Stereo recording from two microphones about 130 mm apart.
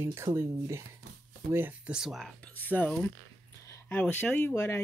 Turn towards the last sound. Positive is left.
turn(degrees=15)  # may be behind; listen again after turning